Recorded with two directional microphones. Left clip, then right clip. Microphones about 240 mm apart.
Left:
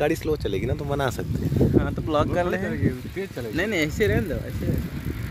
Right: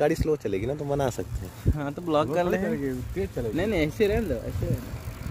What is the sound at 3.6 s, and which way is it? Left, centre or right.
Speech, centre.